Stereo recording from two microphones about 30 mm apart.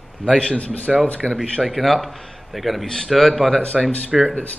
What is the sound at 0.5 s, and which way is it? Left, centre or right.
Speech, left.